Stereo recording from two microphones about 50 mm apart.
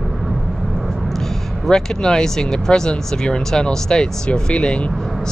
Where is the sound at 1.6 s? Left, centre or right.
Centre.